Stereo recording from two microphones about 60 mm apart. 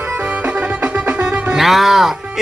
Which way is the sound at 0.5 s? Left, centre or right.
Right.